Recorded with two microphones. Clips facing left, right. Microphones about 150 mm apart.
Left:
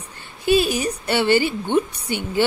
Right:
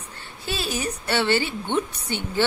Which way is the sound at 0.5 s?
15° left (ahead or behind).